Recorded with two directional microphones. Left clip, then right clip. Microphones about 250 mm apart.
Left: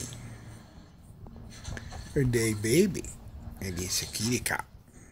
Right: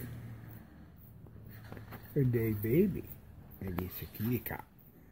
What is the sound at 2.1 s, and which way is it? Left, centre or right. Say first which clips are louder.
Speech: left 5 dB; centre.